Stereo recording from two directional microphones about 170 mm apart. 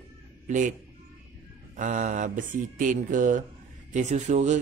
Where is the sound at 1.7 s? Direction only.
45° right (ahead or behind).